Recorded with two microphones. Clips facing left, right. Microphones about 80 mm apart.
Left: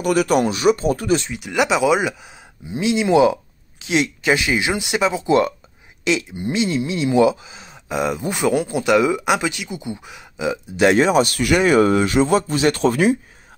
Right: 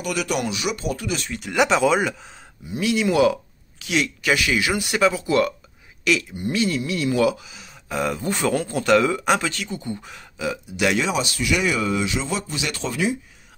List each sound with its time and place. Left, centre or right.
0.0 s speech: left
1.3 s speech: centre
2.7 s speech: left
10.8 s speech: left